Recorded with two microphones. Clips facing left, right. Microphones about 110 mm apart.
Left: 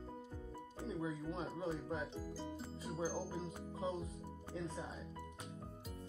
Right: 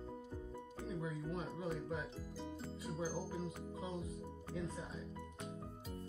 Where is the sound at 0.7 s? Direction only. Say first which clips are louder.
Left 2 dB; 25° left (ahead or behind).